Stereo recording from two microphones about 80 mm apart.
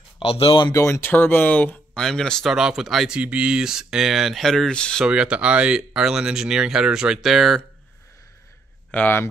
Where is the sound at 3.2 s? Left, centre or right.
Centre.